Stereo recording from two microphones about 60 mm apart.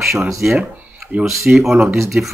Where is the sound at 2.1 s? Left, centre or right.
Right.